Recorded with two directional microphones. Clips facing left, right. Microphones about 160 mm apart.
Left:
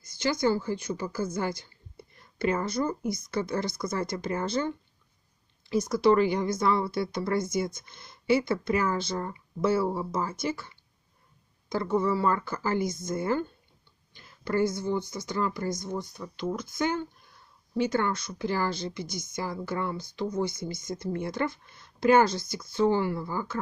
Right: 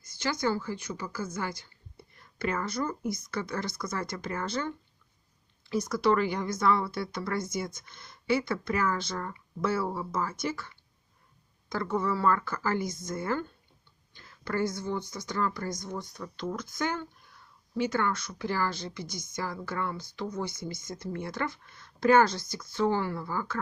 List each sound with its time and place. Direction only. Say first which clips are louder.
0.7 s a woman's voice: left 5 dB; 35° left (ahead or behind)
3.7 s a woman's voice: left 4 dB; 30° left (ahead or behind)
5.8 s a woman's voice: left 4 dB; 15° left (ahead or behind)
11.7 s a woman's voice: left 3 dB; 20° left (ahead or behind)